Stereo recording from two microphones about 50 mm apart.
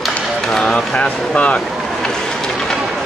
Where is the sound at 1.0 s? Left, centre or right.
Left.